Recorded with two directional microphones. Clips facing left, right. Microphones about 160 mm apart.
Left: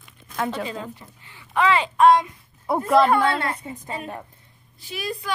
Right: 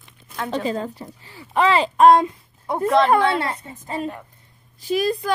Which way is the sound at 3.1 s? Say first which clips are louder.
Right 2 dB; 25° right (ahead or behind).